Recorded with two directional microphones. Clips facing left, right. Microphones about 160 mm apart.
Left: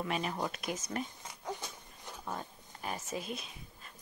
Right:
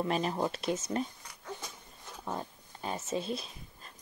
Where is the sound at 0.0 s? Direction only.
30° right (ahead or behind).